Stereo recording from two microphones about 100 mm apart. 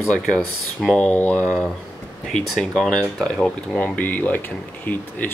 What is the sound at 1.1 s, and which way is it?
Speech, 20° left (ahead or behind).